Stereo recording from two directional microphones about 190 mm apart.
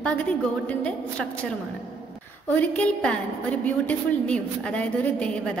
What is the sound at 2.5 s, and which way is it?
A woman's voice, 10° left (ahead or behind).